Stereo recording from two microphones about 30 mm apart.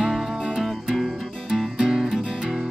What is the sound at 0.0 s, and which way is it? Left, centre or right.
Music, centre.